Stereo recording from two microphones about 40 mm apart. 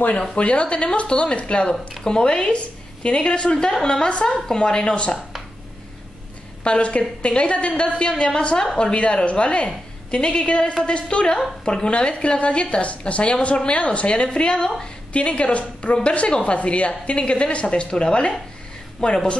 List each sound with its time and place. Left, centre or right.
0.3 s a woman's voice: left
6.6 s a woman's voice: left
8.9 s a woman's voice: left